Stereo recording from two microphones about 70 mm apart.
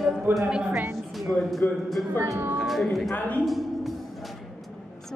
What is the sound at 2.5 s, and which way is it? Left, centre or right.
Speech, centre.